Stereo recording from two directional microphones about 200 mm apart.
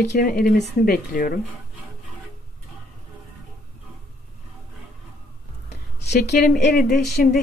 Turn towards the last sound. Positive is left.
turn(degrees=50)  # may be behind; listen again after turning